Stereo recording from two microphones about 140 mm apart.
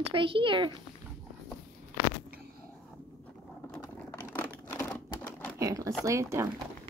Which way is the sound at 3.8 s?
15° left (ahead or behind).